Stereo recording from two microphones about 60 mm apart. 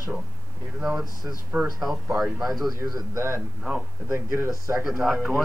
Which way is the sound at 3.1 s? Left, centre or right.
Right.